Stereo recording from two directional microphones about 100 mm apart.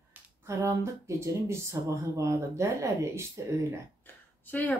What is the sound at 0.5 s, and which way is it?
Speech, 30° right (ahead or behind).